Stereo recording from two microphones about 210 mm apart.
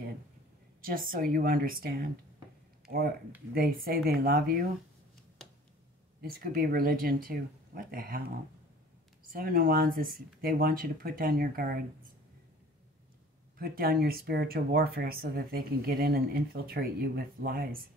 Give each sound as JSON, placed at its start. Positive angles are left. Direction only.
{"t": 0.8, "sound": "speech", "side_deg": -40}
{"t": 3.5, "sound": "speech", "side_deg": -45}
{"t": 6.2, "sound": "speech", "side_deg": -45}
{"t": 9.3, "sound": "speech", "side_deg": -45}
{"t": 13.6, "sound": "speech", "side_deg": -45}